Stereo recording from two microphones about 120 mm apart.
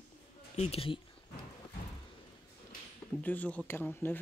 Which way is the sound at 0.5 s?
60° left (ahead or behind).